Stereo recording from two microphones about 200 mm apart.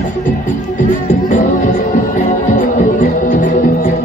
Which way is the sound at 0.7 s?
45° left (ahead or behind).